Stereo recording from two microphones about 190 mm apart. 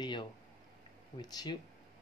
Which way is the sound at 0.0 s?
25° left (ahead or behind).